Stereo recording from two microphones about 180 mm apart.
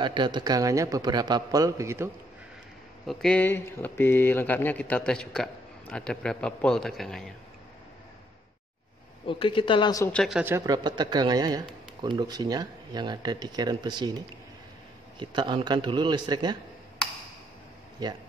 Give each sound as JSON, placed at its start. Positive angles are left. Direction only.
{"t": 0.0, "sound": "a man's voice", "side_deg": -25}
{"t": 3.1, "sound": "speech", "side_deg": 5}
{"t": 9.3, "sound": "speech", "side_deg": 30}
{"t": 10.1, "sound": "speech", "side_deg": 0}
{"t": 10.4, "sound": "a man's voice", "side_deg": -15}
{"t": 15.1, "sound": "a man's voice", "side_deg": -25}
{"t": 18.0, "sound": "a man's voice", "side_deg": -20}